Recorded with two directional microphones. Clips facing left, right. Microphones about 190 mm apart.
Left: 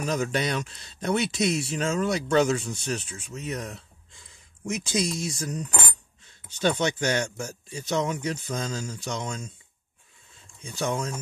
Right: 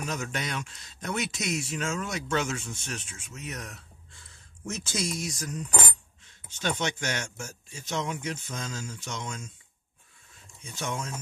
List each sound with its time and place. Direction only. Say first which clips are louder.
0.0 s speech: left 7 dB; 35° left (ahead or behind)
4.1 s speech: even; 15° left (ahead or behind)
6.6 s speech: left 6 dB; 35° left (ahead or behind)
10.6 s speech: left 6 dB; 35° left (ahead or behind)